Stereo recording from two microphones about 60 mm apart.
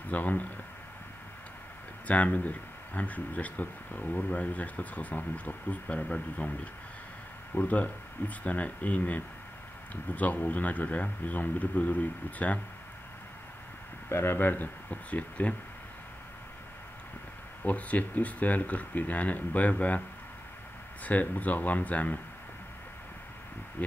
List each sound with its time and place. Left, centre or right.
0.1 s speech: left
2.0 s speech: left
14.0 s speech: left
17.6 s speech: left
21.0 s speech: left